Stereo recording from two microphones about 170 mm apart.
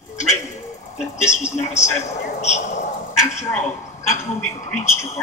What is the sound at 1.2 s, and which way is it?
A man's voice, 40° left (ahead or behind).